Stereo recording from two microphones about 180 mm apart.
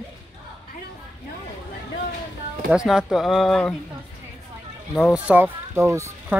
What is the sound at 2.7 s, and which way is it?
Speech, 5° right (ahead or behind).